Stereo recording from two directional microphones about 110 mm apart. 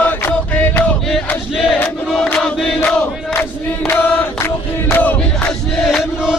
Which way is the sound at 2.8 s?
15° left (ahead or behind).